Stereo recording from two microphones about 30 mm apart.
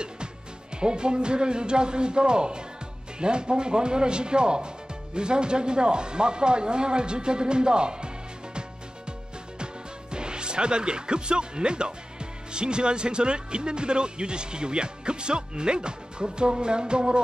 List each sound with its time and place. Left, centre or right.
0.7 s speech: right
10.1 s speech: right